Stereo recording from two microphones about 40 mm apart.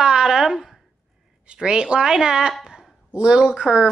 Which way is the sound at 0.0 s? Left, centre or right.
Centre.